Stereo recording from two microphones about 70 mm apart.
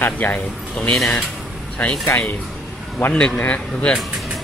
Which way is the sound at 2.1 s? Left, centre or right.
Left.